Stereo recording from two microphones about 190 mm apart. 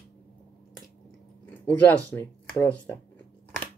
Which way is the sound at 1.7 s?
10° left (ahead or behind).